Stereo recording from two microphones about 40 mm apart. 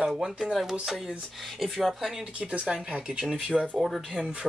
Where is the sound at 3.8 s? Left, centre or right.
Centre.